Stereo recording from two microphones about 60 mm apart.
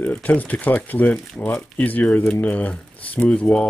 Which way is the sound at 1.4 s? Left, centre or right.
Left.